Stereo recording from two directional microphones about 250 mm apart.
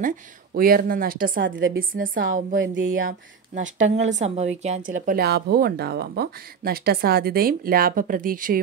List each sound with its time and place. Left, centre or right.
0.6 s a woman's voice: right
1.4 s a woman's voice: right
2.0 s a woman's voice: right
2.6 s a woman's voice: right
3.0 s a woman's voice: right